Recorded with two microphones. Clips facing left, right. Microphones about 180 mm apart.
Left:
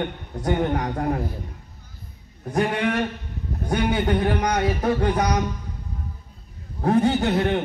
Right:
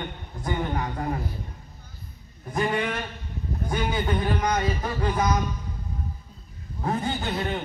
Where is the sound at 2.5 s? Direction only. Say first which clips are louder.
Left 4 dB; 70° left (ahead or behind).